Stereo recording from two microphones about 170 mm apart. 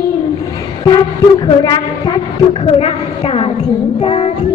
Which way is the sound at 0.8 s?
25° left (ahead or behind).